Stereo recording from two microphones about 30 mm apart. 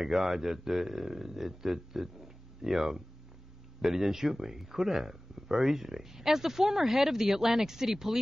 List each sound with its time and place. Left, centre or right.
0.0 s speech: centre